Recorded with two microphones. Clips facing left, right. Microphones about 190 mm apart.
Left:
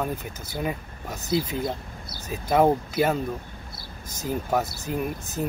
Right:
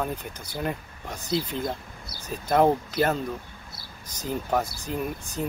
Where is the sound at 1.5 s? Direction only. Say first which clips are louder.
Left 2 dB; 5° left (ahead or behind).